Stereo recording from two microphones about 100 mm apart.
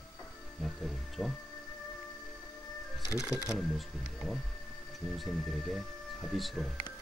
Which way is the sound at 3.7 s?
5° right (ahead or behind).